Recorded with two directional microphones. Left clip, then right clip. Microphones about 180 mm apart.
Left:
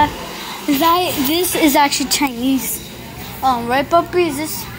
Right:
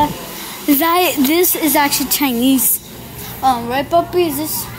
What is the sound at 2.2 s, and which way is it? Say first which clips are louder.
Speech: right 3 dB; 35° right (ahead or behind).